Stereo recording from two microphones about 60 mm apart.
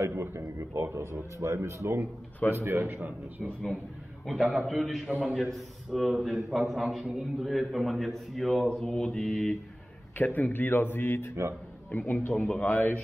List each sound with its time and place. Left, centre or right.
0.1 s a man's voice: right
1.4 s a man's voice: right
4.3 s a man's voice: centre
8.7 s mantra: centre
10.1 s a man's voice: left